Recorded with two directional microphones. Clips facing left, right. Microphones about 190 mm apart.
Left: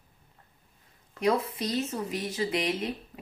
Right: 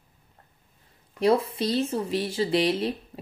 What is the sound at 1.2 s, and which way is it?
Speech, 30° right (ahead or behind).